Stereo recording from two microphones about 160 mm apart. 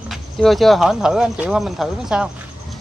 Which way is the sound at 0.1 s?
Centre (ahead or behind).